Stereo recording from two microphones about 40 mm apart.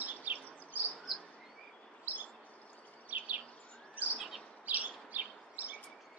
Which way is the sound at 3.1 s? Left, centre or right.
Right.